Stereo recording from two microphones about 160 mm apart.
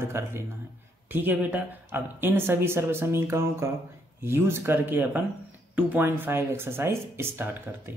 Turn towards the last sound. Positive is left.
turn(degrees=-15)  # may be behind; listen again after turning